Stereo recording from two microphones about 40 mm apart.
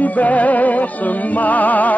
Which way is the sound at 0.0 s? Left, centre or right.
Left.